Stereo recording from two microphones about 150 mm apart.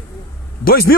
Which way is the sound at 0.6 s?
90° left.